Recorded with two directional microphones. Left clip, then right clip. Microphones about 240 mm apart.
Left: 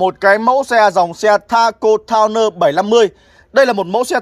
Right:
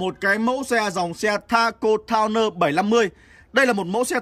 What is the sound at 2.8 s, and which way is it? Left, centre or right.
A man's voice, centre.